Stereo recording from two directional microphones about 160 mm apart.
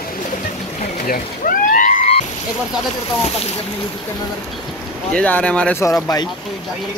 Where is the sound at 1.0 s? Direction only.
60° left (ahead or behind).